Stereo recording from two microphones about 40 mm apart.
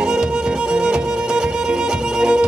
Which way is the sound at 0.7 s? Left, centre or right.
Right.